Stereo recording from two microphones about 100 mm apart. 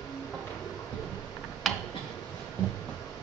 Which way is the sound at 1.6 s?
Centre (ahead or behind).